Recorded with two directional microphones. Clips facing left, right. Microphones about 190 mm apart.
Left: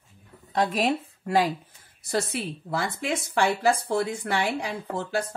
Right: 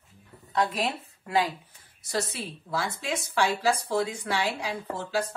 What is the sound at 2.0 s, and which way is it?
A woman's voice, 55° left (ahead or behind).